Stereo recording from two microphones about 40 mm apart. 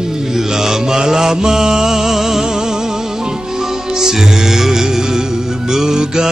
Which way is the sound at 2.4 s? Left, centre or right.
Centre.